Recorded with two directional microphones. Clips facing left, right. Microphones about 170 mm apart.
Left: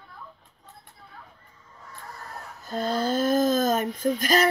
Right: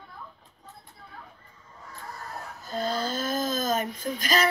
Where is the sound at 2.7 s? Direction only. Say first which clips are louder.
Left 4 dB; 55° left (ahead or behind).